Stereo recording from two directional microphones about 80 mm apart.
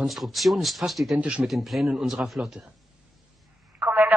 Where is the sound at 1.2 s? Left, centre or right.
Centre.